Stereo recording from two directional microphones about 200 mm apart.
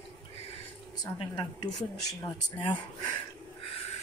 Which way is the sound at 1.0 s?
20° left (ahead or behind).